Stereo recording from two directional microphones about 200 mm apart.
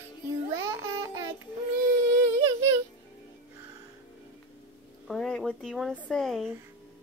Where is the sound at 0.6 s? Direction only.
15° right (ahead or behind).